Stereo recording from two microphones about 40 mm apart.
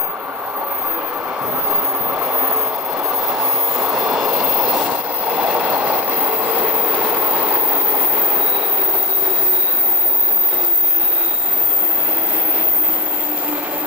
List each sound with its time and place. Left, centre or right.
1.4 s train: right
4.3 s train: right